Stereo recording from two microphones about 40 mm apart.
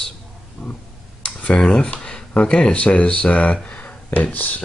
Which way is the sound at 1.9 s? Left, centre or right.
Left.